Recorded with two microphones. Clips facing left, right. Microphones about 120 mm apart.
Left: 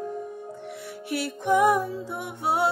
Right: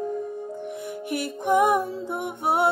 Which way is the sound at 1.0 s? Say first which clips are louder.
Even; 50° right (ahead or behind).